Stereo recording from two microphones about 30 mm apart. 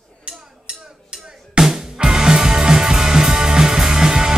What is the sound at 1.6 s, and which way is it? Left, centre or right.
Music, right.